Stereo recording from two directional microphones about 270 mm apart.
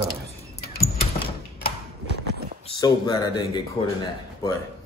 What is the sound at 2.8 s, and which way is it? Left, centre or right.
Speech, centre.